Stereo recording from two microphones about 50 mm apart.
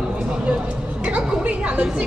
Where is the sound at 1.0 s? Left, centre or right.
Right.